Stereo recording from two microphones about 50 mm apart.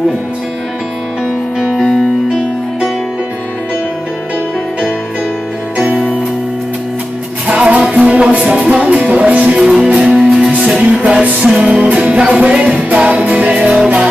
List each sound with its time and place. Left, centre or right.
1.6 s music: centre
1.9 s music: centre
7.4 s music: right
9.6 s music: centre
11.5 s music: centre
11.8 s music: right